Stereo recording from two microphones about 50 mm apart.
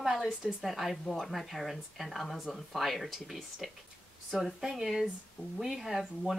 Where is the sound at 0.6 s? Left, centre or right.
Centre.